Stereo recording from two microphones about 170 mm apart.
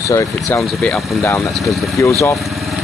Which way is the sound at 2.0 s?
20° left (ahead or behind).